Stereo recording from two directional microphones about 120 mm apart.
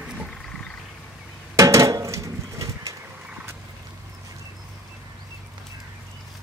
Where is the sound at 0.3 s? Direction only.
5° left (ahead or behind).